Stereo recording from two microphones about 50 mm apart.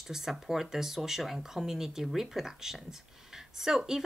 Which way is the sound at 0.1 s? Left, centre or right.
Centre.